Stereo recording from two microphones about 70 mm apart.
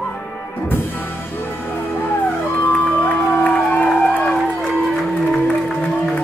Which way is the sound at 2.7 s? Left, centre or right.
Left.